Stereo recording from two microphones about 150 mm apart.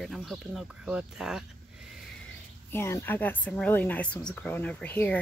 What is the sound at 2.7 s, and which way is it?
A woman's voice, 15° left (ahead or behind).